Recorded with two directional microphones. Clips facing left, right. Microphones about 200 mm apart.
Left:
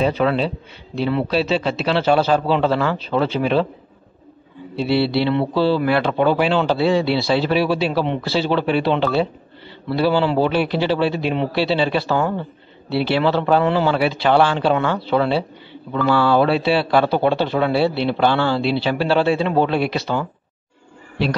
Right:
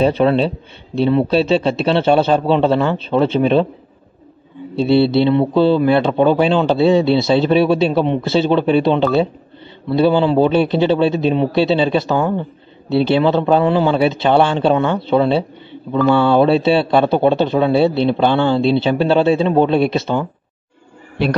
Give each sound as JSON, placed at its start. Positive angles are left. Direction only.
{"t": 0.0, "sound": "a man's voice", "side_deg": -30}
{"t": 4.7, "sound": "a man's voice", "side_deg": -25}